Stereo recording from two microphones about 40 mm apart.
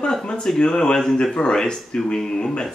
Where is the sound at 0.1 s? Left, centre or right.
Centre.